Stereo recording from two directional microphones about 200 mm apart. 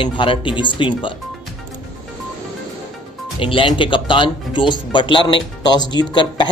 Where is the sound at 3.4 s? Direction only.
25° left (ahead or behind).